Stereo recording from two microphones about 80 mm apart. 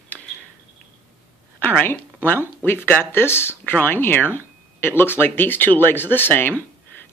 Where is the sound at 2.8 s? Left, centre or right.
Left.